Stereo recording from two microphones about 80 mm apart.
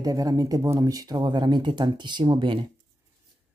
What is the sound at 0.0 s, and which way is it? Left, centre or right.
Speech, right.